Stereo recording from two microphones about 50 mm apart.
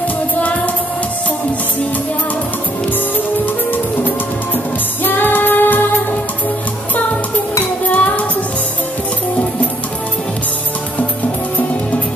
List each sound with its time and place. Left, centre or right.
5.0 s music: left
7.9 s music: left